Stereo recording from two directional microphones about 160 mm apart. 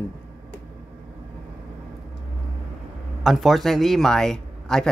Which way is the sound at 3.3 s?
Centre (ahead or behind).